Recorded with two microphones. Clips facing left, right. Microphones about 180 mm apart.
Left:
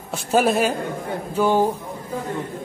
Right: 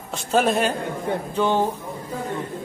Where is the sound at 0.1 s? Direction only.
5° left (ahead or behind).